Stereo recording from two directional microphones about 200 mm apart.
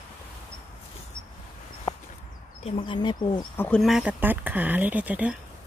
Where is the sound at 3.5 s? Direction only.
5° left (ahead or behind).